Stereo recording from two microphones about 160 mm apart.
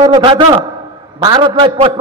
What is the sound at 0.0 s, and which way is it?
A man's voice, 30° right (ahead or behind).